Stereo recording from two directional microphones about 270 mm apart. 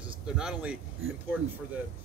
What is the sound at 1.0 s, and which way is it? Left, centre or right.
Speech, right.